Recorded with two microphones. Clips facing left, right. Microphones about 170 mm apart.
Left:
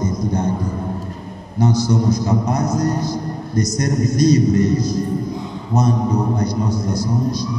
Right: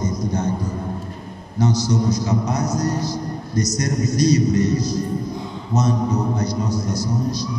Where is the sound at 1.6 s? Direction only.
55° left (ahead or behind).